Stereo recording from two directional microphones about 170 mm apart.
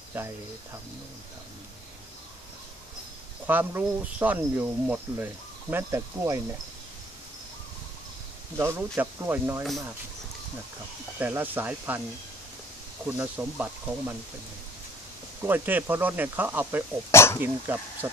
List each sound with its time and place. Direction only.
0.2 s speech: 10° right (ahead or behind)
3.4 s speech: 10° right (ahead or behind)
8.5 s speech: 15° right (ahead or behind)
11.1 s speech: 10° right (ahead or behind)
13.0 s speech: 10° right (ahead or behind)
15.4 s speech: 10° right (ahead or behind)
17.1 s speech: 15° left (ahead or behind)
17.7 s speech: 10° right (ahead or behind)